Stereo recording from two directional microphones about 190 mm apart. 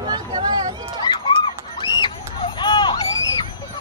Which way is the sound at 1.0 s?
25° left (ahead or behind).